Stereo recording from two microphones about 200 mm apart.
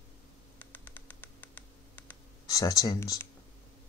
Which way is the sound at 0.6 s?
10° left (ahead or behind).